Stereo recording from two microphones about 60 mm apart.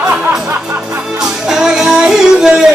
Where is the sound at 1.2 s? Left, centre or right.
Centre.